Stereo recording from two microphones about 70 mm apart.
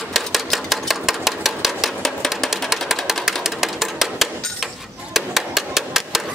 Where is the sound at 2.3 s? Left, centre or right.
Centre.